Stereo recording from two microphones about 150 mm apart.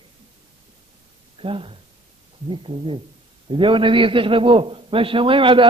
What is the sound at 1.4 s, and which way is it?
A man's voice, 35° right (ahead or behind).